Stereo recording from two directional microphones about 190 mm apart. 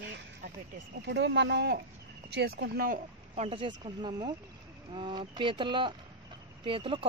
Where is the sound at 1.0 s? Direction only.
65° right (ahead or behind).